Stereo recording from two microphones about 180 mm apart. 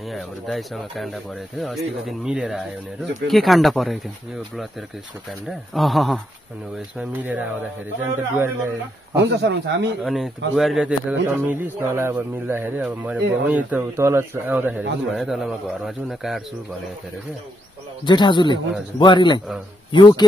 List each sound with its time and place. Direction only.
0.1 s speech: centre (ahead or behind)
5.5 s speech: centre (ahead or behind)
9.3 s speech: 75° right (ahead or behind)
10.0 s speech: centre (ahead or behind)
18.0 s a man's voice: 25° left (ahead or behind)